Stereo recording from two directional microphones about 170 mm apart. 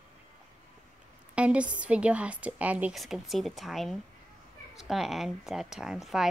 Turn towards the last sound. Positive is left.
turn(degrees=0)  # may be behind; listen again after turning